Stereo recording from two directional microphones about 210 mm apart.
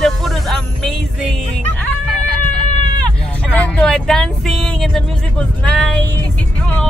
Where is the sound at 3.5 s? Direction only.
5° left (ahead or behind).